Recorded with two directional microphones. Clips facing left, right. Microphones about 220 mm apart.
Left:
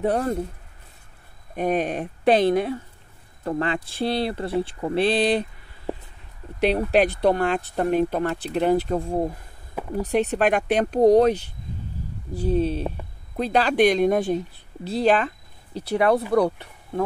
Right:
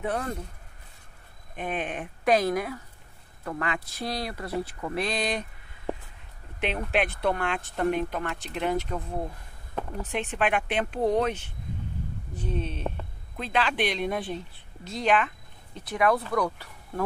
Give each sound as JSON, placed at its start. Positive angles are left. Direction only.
{"t": 0.0, "sound": "speech", "side_deg": 35}
{"t": 1.5, "sound": "speech", "side_deg": 40}
{"t": 6.6, "sound": "speech", "side_deg": 40}